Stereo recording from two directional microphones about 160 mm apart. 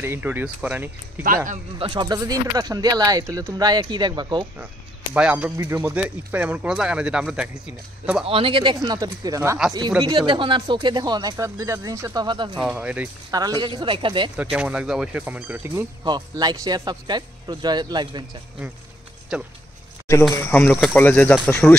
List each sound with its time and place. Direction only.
0.0 s speech: 10° right (ahead or behind)
1.8 s speech: 30° right (ahead or behind)
5.1 s speech: 10° right (ahead or behind)
8.3 s speech: 35° right (ahead or behind)
12.5 s speech: 5° right (ahead or behind)
13.3 s speech: 25° right (ahead or behind)
14.3 s speech: 5° right (ahead or behind)
16.0 s speech: 25° right (ahead or behind)
19.3 s speech: 5° right (ahead or behind)
20.4 s speech: 10° left (ahead or behind)